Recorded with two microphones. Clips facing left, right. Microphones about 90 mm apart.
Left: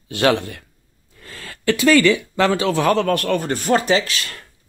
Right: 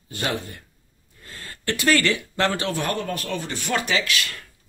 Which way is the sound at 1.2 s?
90° left.